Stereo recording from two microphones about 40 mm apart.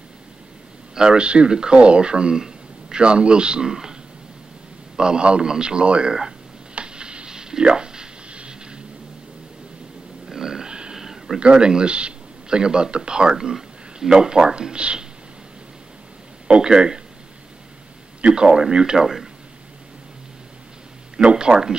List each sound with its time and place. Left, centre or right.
0.9 s a man's voice: right
4.9 s speech: right
6.7 s a sound: right
10.2 s burping: centre
11.0 s a sound: centre
11.3 s a man's voice: right
16.4 s speech: right
18.3 s speech: centre
21.2 s speech: right
21.5 s speech: centre